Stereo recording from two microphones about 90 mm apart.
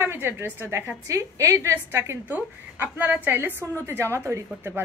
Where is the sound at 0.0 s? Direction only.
25° right (ahead or behind).